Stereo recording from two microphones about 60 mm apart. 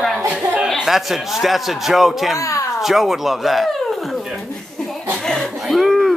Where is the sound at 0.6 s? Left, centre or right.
Centre.